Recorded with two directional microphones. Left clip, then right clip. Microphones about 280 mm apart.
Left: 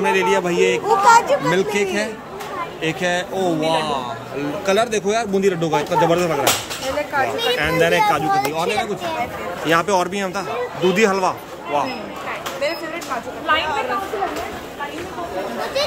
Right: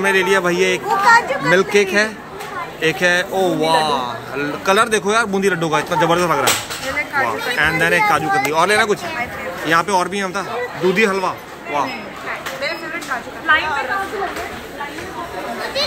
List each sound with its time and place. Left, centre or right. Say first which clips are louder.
0.0 s speech: right 2 dB; centre
0.8 s a child's voice: even; left
1.5 s speech: right 5 dB; centre
7.5 s speech: right 2 dB; centre